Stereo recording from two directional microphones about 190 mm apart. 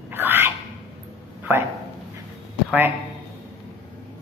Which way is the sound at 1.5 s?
10° right (ahead or behind).